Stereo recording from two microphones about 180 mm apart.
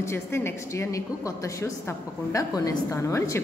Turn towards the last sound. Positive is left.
turn(degrees=15)  # may be behind; listen again after turning